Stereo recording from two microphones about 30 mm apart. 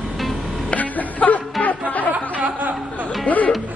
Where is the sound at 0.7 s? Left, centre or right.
Left.